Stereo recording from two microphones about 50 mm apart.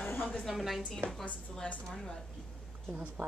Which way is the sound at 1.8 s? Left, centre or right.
Centre.